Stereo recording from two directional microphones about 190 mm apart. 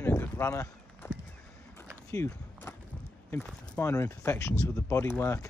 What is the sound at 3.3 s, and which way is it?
Speech, 10° left (ahead or behind).